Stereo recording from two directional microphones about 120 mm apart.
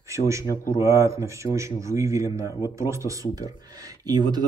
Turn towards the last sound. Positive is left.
turn(degrees=-35)  # may be behind; listen again after turning